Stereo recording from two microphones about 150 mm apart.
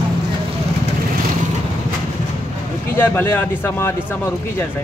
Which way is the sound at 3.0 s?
15° left (ahead or behind).